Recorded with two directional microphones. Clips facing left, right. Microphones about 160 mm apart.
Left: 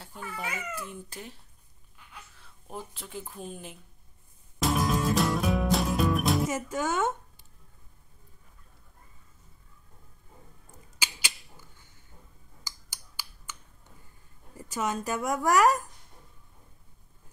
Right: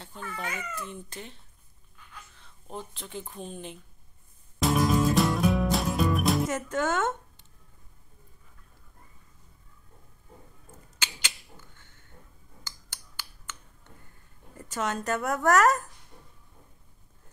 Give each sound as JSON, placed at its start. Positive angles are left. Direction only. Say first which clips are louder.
{"t": 0.0, "sound": "speech", "louder": "right 1 dB", "side_deg": 10}
{"t": 4.6, "sound": "music", "louder": "right 3 dB", "side_deg": 0}
{"t": 10.7, "sound": "rodents", "louder": "even", "side_deg": 10}
{"t": 12.6, "sound": "finger snapping", "louder": "even", "side_deg": 10}
{"t": 14.6, "sound": "speech", "louder": "even", "side_deg": 10}